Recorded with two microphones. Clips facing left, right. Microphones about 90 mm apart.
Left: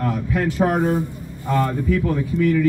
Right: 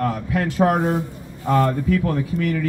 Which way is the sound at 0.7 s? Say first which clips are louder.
Left 1 dB; 30° right (ahead or behind).